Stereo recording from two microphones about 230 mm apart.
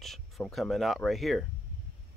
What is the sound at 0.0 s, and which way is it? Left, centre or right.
Speech, centre.